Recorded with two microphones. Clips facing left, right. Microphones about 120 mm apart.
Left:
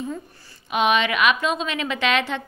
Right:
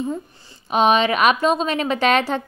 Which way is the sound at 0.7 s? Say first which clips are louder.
Right 4 dB; 35° right (ahead or behind).